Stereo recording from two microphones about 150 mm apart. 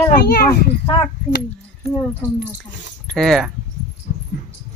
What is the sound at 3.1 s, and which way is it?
Speech, centre (ahead or behind).